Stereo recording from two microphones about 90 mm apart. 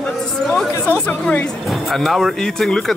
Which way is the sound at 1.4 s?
Centre (ahead or behind).